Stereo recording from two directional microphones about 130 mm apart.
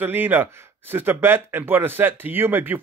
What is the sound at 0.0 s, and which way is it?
Speech, 15° right (ahead or behind).